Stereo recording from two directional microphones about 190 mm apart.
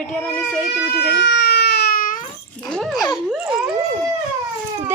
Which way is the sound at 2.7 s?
Centre (ahead or behind).